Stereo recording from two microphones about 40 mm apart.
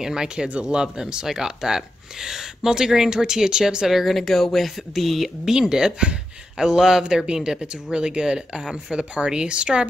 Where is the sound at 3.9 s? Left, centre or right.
Centre.